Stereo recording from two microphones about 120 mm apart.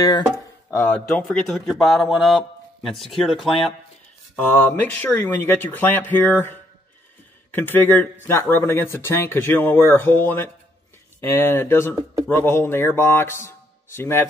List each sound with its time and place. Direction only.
0.7 s a man's voice: 10° left (ahead or behind)
4.4 s a man's voice: 15° left (ahead or behind)